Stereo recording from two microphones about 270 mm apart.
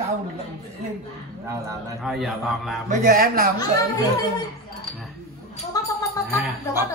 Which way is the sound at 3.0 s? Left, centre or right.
Right.